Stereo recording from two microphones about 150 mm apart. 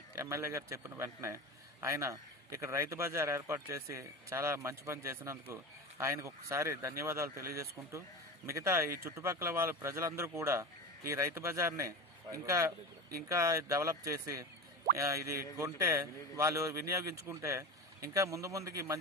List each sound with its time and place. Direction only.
0.1 s a man's voice: 20° right (ahead or behind)